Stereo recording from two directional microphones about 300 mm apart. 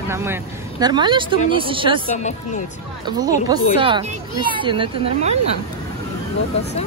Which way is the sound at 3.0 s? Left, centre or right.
Centre.